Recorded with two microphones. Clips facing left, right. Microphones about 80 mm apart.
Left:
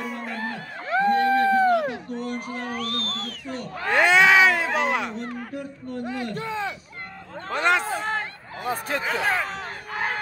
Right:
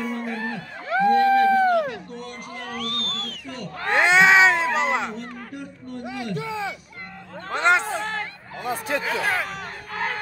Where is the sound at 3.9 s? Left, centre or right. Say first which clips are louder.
Right 1 dB; right.